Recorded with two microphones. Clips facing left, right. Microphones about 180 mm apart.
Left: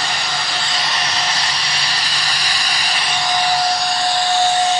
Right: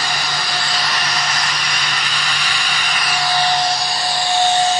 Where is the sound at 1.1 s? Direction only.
30° left (ahead or behind).